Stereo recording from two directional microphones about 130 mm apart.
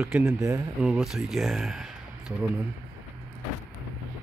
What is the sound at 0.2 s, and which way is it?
Speech, 20° right (ahead or behind).